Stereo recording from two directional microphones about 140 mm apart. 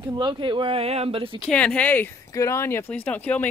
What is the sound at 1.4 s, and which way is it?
Speech, 10° left (ahead or behind).